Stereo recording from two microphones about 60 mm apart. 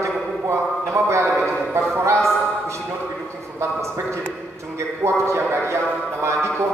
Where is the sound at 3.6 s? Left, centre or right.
Right.